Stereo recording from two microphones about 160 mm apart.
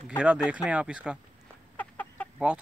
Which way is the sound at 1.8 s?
10° left (ahead or behind).